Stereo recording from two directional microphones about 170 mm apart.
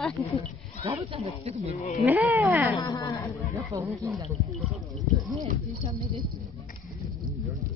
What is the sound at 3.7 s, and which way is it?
Speech, 20° right (ahead or behind).